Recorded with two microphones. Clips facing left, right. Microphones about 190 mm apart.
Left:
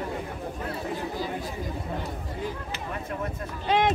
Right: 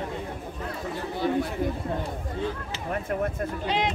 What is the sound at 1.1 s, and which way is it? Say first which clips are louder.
Chatter: right 6 dB; 65° right (ahead or behind).